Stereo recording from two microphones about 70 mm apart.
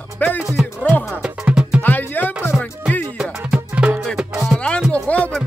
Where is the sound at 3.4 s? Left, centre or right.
Centre.